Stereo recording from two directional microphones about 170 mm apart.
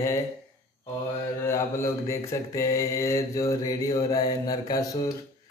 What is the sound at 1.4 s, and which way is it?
Mantra, 15° left (ahead or behind).